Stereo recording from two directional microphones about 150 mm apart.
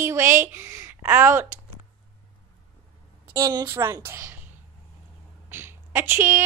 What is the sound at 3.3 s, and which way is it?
A woman's voice, 25° right (ahead or behind).